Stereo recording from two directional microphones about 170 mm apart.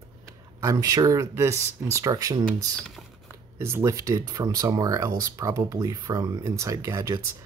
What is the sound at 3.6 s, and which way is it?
Speech, 15° right (ahead or behind).